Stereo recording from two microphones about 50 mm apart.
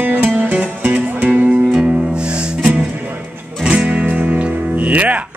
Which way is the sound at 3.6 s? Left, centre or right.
Right.